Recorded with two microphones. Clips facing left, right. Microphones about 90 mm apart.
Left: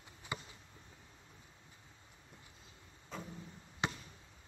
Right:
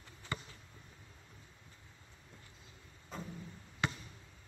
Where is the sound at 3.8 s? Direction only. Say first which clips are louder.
Right 1 dB; 20° left (ahead or behind).